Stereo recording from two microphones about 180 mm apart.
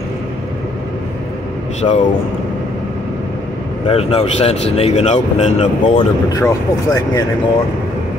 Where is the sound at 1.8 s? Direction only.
25° left (ahead or behind).